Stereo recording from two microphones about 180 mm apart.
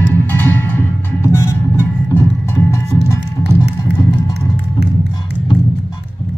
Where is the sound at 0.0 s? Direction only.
10° left (ahead or behind).